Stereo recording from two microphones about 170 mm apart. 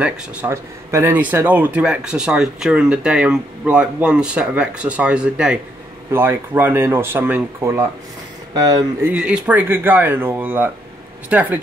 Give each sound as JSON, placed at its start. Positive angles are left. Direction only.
{"t": 0.0, "sound": "speech", "side_deg": -10}
{"t": 9.1, "sound": "speech", "side_deg": -5}